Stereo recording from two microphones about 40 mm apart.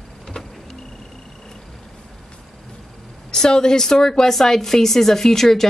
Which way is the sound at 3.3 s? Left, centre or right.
Centre.